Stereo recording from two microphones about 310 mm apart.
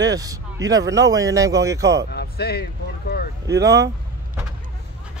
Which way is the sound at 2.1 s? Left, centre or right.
Left.